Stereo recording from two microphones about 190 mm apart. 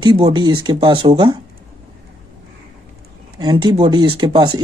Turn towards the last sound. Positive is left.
turn(degrees=-25)  # may be behind; listen again after turning